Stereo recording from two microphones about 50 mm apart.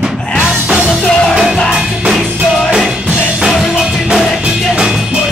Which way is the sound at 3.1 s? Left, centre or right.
Right.